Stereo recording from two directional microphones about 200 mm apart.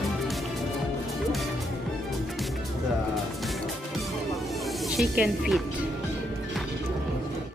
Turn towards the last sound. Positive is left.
turn(degrees=-5)  # may be behind; listen again after turning